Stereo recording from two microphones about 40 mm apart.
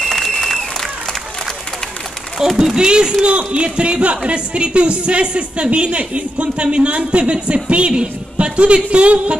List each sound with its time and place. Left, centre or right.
0.0 s applause: centre
2.6 s a woman's voice: centre